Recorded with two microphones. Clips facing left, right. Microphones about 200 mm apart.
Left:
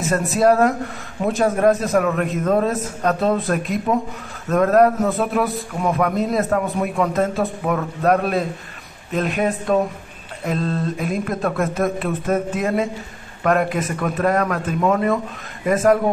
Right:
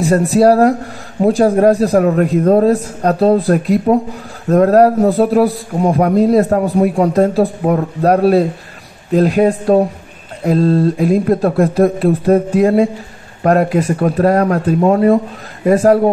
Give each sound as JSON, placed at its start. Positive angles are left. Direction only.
{"t": 0.0, "sound": "a man's voice", "side_deg": -35}